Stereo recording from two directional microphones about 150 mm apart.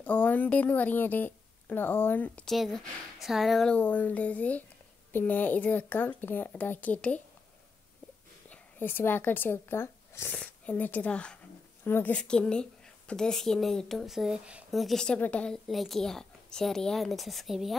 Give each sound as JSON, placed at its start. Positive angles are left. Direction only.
{"t": 0.0, "sound": "speech", "side_deg": 10}
{"t": 8.5, "sound": "a woman's voice", "side_deg": 15}